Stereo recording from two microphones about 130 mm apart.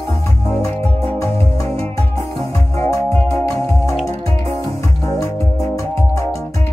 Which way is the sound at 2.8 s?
25° left (ahead or behind).